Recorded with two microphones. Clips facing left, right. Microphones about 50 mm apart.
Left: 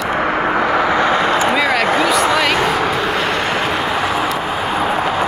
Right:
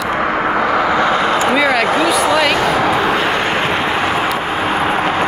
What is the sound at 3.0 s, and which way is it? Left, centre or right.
Vehicle, right.